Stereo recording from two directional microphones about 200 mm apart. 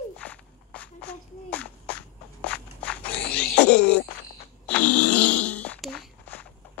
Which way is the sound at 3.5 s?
55° left (ahead or behind).